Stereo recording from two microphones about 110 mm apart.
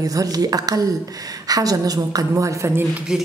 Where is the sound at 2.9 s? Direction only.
5° right (ahead or behind).